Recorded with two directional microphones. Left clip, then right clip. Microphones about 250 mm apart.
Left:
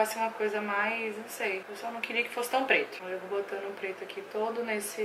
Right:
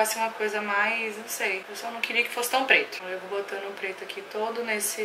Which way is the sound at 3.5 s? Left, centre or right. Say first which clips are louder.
Right 3 dB; centre.